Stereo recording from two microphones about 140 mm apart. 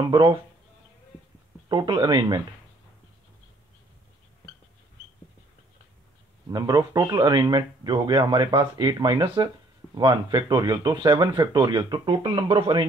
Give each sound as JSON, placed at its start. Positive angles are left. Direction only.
{"t": 0.1, "sound": "speech", "side_deg": -35}
{"t": 1.7, "sound": "speech", "side_deg": -30}
{"t": 6.5, "sound": "speech", "side_deg": -25}